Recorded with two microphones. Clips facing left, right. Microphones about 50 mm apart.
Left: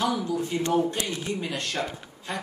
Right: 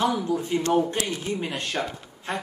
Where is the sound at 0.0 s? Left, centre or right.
Right.